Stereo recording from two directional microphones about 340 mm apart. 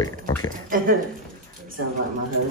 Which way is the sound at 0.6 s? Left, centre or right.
Right.